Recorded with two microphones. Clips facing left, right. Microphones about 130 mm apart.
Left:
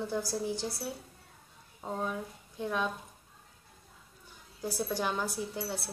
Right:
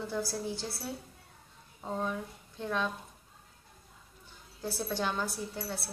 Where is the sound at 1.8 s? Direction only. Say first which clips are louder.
Even; 5° left (ahead or behind).